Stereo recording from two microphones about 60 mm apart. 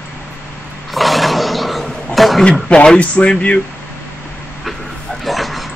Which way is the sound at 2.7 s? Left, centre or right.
Centre.